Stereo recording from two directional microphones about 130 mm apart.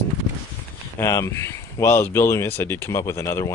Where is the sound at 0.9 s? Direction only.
20° left (ahead or behind).